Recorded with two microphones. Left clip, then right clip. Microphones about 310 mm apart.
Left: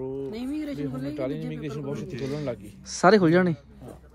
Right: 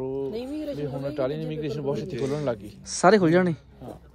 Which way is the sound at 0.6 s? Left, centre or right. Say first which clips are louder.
Right 2 dB; left.